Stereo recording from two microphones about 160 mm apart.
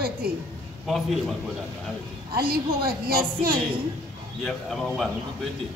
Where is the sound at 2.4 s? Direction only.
70° right (ahead or behind).